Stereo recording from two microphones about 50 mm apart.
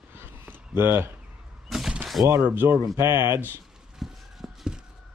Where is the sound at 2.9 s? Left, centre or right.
Right.